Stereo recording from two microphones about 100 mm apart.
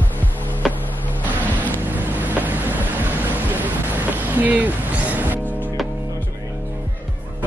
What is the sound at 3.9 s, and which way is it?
Music, 15° right (ahead or behind).